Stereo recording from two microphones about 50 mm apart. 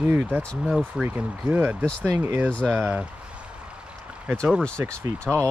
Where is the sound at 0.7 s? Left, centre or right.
Centre.